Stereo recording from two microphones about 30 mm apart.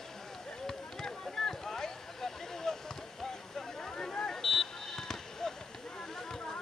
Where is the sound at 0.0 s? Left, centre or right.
Centre.